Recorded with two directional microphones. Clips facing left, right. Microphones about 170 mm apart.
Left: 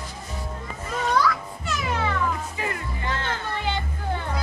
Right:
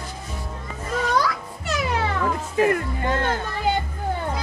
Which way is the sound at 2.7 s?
50° right (ahead or behind).